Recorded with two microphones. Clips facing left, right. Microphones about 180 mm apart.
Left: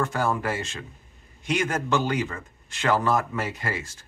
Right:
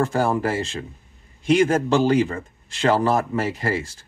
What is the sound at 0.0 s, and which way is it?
Speech, 30° right (ahead or behind).